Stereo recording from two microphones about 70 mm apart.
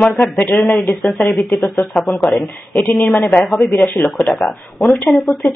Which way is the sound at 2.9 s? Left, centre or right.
Left.